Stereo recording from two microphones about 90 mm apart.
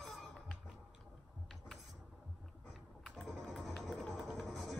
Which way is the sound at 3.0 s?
5° left (ahead or behind).